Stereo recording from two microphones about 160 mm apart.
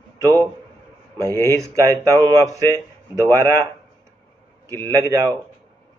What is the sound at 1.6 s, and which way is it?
A man's voice, 20° right (ahead or behind).